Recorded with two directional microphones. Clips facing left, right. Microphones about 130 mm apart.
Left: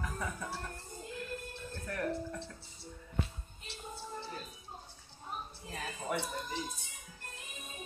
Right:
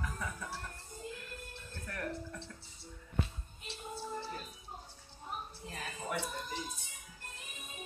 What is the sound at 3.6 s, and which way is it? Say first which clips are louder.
Music: right 3 dB; centre (ahead or behind).